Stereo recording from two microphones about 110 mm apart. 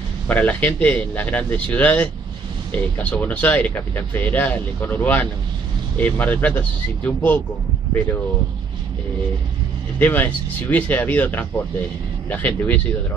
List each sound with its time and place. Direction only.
0.3 s speech: 15° left (ahead or behind)
9.9 s speech: 15° left (ahead or behind)